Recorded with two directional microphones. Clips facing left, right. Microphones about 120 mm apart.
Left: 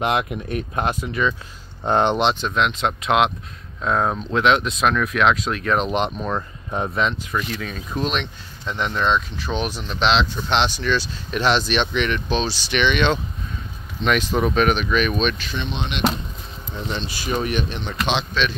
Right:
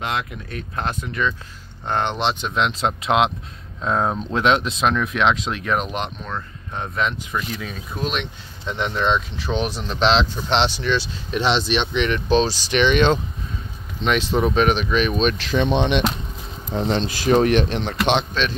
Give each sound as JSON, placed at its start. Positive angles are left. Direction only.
{"t": 0.0, "sound": "speech", "side_deg": 20}
{"t": 1.9, "sound": "speech", "side_deg": 20}
{"t": 2.4, "sound": "speech", "side_deg": -25}
{"t": 6.2, "sound": "speech", "side_deg": 20}
{"t": 7.0, "sound": "speech", "side_deg": -5}
{"t": 8.6, "sound": "speech", "side_deg": -20}
{"t": 14.0, "sound": "speech", "side_deg": -25}
{"t": 15.4, "sound": "speech", "side_deg": -90}
{"t": 16.7, "sound": "speech", "side_deg": -90}
{"t": 18.1, "sound": "speech", "side_deg": -40}